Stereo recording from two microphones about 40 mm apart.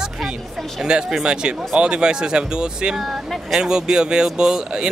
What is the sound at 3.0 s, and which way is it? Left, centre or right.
Speech, centre.